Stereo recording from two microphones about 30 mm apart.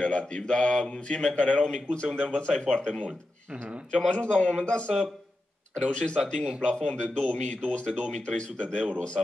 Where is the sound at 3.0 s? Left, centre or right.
Right.